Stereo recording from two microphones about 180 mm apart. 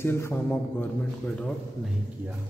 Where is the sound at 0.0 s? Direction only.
15° left (ahead or behind).